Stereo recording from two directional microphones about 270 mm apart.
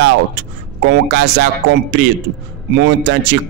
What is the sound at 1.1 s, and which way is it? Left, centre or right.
Speech, right.